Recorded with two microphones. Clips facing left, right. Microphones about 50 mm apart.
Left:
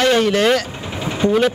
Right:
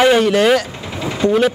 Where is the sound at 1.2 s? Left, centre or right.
Centre.